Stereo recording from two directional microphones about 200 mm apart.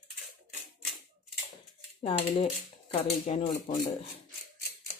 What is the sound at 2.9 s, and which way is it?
A woman's voice, 35° left (ahead or behind).